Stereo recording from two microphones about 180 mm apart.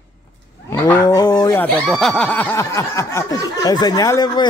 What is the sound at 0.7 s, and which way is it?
Cattle, 10° left (ahead or behind).